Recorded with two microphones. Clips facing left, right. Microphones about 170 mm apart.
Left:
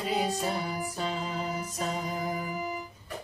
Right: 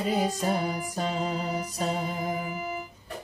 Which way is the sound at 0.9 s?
40° right (ahead or behind).